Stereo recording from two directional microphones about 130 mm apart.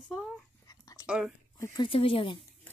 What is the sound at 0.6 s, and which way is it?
Whispering, 25° left (ahead or behind).